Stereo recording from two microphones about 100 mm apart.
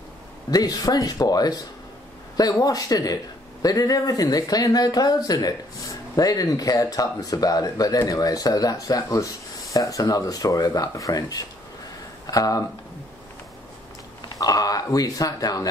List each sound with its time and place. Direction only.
0.5 s speech: 40° left (ahead or behind)
14.4 s speech: 40° left (ahead or behind)